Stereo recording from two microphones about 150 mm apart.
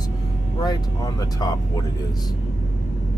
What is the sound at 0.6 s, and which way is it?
Speech, 25° left (ahead or behind).